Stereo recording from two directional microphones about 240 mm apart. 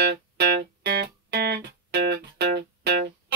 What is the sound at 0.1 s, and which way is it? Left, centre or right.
Music, right.